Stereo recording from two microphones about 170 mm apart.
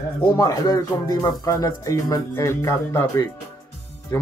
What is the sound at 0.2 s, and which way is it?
Speech, 25° left (ahead or behind).